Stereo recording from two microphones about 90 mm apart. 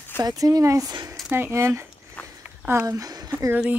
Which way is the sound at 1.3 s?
25° right (ahead or behind).